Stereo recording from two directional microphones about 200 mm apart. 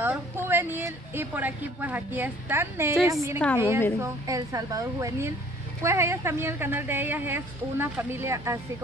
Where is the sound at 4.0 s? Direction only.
15° right (ahead or behind).